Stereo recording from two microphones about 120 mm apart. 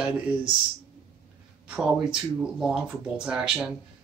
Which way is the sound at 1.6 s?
5° right (ahead or behind).